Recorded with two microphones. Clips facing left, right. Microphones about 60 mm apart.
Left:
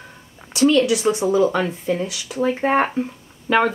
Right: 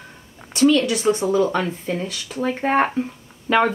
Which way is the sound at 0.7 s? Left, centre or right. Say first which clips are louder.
Left 3 dB; centre.